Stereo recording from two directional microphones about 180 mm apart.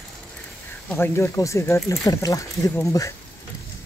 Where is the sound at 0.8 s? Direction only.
10° left (ahead or behind).